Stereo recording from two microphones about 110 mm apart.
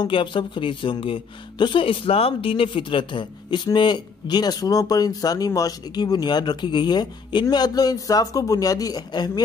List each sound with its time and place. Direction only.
0.0 s speech: 50° left (ahead or behind)